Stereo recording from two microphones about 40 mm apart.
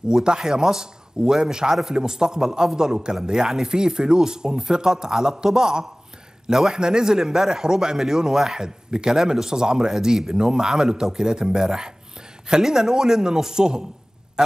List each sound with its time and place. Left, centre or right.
0.1 s speech: centre
7.6 s speech: centre